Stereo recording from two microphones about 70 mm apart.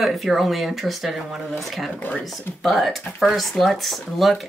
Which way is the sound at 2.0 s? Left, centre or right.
Left.